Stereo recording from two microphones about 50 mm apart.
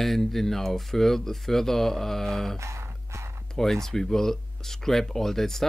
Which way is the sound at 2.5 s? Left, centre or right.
Right.